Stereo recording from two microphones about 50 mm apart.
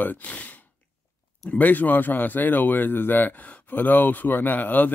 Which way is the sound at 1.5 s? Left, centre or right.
Left.